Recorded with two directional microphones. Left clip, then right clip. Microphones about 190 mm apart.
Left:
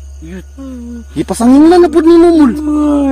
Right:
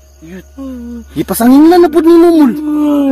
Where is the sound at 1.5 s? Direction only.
35° right (ahead or behind).